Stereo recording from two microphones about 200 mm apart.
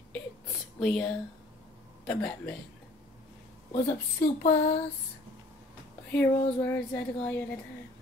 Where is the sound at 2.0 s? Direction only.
5° left (ahead or behind).